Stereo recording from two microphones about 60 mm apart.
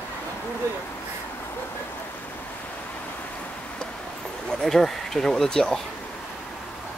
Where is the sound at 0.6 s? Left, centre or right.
Right.